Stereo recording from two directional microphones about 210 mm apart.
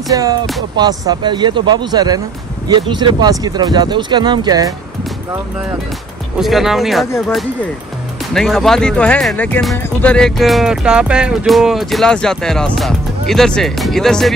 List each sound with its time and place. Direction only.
0.1 s music: 15° right (ahead or behind)
0.7 s speech: 20° right (ahead or behind)
6.3 s speech: centre (ahead or behind)
8.3 s speech: centre (ahead or behind)